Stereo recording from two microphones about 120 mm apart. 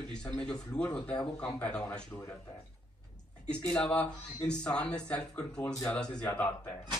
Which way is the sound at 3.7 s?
10° left (ahead or behind).